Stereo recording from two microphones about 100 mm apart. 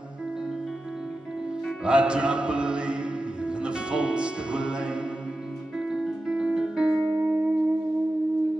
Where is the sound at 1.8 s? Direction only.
10° right (ahead or behind).